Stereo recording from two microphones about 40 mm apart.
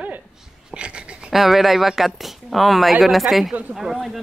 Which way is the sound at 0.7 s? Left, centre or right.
Right.